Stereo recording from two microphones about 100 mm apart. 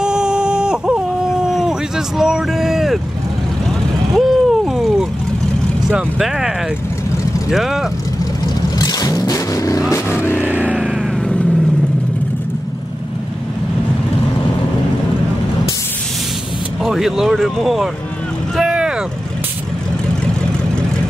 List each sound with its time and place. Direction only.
0.0 s a sound: 5° right (ahead or behind)
4.1 s vehicle: centre (ahead or behind)
5.9 s speech: 5° right (ahead or behind)
7.5 s speech: 5° right (ahead or behind)
8.7 s vehicle: 40° left (ahead or behind)
9.9 s vehicle: 25° left (ahead or behind)
10.4 s vehicle: 15° right (ahead or behind)
16.8 s speech: 5° right (ahead or behind)
18.6 s vehicle: 10° right (ahead or behind)